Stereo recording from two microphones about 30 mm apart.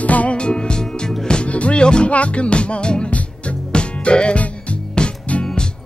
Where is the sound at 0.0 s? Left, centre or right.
Left.